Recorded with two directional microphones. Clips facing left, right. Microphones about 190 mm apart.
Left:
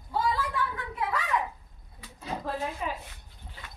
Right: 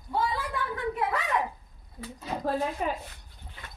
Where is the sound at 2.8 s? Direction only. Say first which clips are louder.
Right 4 dB; 45° right (ahead or behind).